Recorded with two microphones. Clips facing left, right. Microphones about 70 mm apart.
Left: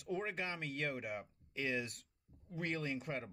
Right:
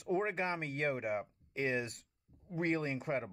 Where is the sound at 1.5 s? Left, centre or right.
Right.